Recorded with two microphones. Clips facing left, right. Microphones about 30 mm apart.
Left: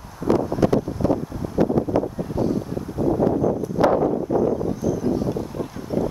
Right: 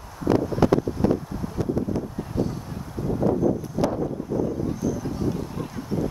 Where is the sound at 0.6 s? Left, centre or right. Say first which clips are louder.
Even; centre.